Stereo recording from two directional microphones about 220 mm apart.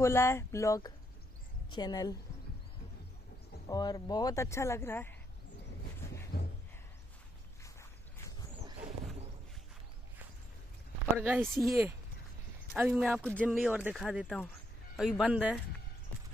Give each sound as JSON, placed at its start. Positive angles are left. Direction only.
{"t": 0.0, "sound": "speech", "side_deg": 10}
{"t": 3.6, "sound": "speech", "side_deg": 15}
{"t": 6.0, "sound": "a sound", "side_deg": 10}
{"t": 8.8, "sound": "a sound", "side_deg": -5}
{"t": 11.1, "sound": "speech", "side_deg": -10}
{"t": 13.2, "sound": "speech", "side_deg": 5}